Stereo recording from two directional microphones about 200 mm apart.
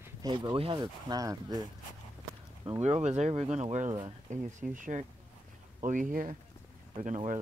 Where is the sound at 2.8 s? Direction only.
35° right (ahead or behind).